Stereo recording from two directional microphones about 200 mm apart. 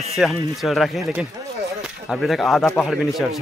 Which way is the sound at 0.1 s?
Centre (ahead or behind).